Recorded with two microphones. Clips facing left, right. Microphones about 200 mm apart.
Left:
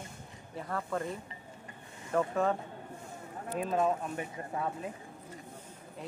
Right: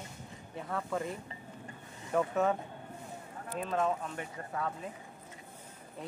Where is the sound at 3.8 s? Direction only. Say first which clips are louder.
Left 1 dB; 20° left (ahead or behind).